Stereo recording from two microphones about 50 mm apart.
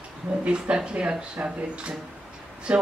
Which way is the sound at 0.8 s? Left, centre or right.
Centre.